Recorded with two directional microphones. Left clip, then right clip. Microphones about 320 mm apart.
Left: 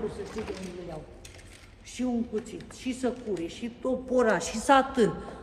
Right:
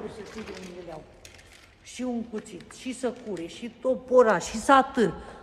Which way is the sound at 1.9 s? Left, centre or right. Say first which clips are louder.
Left 2 dB; centre.